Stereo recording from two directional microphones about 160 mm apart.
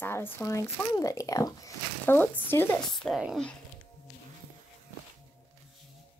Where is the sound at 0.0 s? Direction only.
15° left (ahead or behind).